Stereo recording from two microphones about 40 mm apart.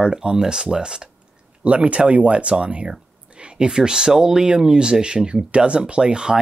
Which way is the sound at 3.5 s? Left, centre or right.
Centre.